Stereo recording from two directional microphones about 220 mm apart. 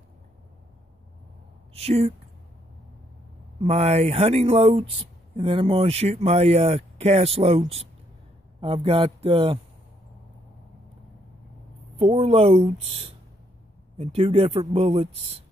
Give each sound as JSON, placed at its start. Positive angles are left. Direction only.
{"t": 1.7, "sound": "speech", "side_deg": -30}
{"t": 3.6, "sound": "speech", "side_deg": -30}
{"t": 12.0, "sound": "speech", "side_deg": -30}